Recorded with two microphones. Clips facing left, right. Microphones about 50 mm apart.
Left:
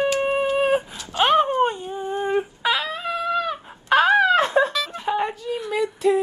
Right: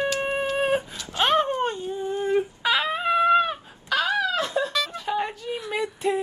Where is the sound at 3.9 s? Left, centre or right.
Left.